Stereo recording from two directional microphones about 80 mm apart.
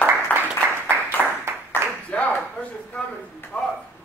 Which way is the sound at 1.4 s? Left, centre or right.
Right.